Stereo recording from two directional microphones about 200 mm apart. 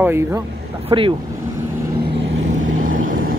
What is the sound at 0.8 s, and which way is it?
Speech, 25° right (ahead or behind).